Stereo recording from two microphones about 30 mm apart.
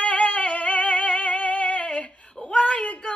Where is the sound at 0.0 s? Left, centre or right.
Left.